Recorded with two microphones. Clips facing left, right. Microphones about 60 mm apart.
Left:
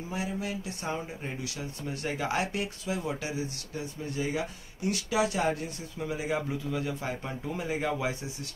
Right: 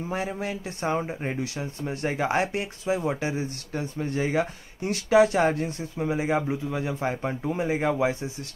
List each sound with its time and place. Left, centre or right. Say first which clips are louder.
0.1 s speech: right 3 dB; right
7.2 s speech: right 7 dB; right
7.5 s speech: right 5 dB; right